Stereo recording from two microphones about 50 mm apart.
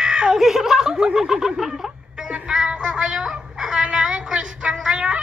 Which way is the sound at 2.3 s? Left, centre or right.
Centre.